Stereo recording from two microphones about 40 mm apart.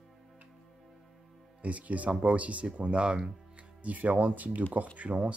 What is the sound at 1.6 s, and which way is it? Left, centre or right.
Speech, right.